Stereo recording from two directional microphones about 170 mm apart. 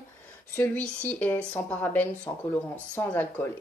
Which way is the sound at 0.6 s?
10° left (ahead or behind).